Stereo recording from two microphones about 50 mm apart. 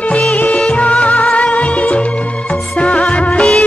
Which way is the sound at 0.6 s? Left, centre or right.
Left.